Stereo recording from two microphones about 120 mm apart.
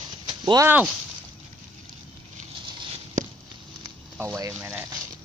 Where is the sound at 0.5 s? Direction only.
15° right (ahead or behind).